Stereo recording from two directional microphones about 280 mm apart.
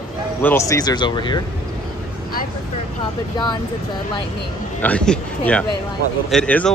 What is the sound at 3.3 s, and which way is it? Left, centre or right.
Speech, centre.